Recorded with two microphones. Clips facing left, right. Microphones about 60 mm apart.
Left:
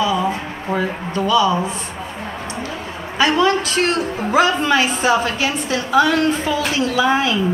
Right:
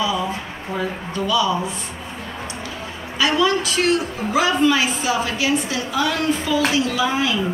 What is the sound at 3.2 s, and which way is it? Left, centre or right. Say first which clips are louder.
A woman's voice: left 3 dB; left.